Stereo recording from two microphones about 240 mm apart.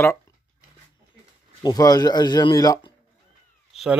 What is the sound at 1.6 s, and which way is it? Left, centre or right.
Speech, centre.